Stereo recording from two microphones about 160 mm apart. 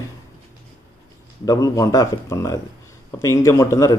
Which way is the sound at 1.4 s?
20° left (ahead or behind).